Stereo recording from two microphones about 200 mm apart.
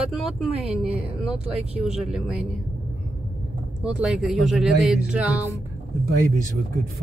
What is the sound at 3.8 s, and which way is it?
Speech, 5° right (ahead or behind).